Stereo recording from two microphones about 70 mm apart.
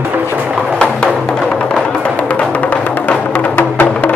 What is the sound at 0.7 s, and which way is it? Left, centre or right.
Music, centre.